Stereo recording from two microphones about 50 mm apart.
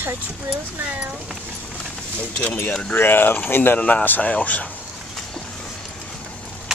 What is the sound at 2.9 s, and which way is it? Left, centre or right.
Speech, left.